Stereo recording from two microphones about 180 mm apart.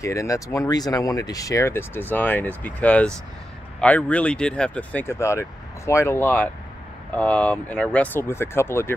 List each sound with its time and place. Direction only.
0.0 s speech: 15° left (ahead or behind)